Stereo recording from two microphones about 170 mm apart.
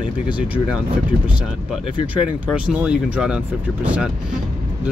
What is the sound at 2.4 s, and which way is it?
Speech, 5° right (ahead or behind).